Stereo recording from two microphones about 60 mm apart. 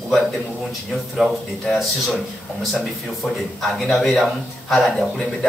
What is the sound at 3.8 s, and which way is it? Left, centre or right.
A man's voice, centre.